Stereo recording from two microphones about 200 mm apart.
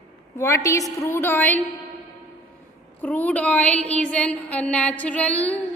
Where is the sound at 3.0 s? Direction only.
10° left (ahead or behind).